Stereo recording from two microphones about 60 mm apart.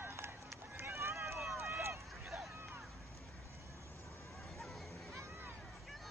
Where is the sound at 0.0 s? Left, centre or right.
Right.